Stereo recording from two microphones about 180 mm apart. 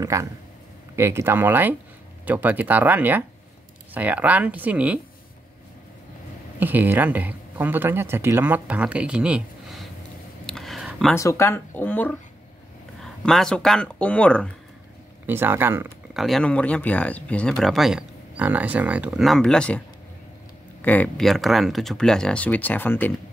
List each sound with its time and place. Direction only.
0.0 s speech: 15° right (ahead or behind)
6.6 s speech: 10° right (ahead or behind)
10.4 s a sound: centre (ahead or behind)
11.1 s speech: 15° left (ahead or behind)
15.2 s speech: 10° right (ahead or behind)
16.2 s speech: centre (ahead or behind)
20.8 s speech: 10° left (ahead or behind)